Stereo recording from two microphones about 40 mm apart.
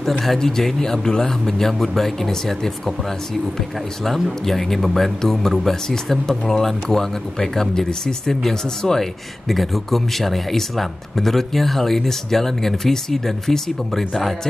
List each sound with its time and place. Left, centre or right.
0.2 s speech: centre
4.0 s speech: centre